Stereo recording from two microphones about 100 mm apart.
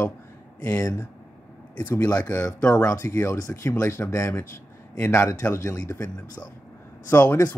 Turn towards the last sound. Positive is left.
turn(degrees=25)  # may be behind; listen again after turning